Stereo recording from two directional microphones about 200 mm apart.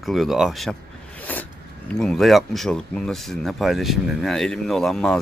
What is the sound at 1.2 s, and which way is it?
Zipper, 10° left (ahead or behind).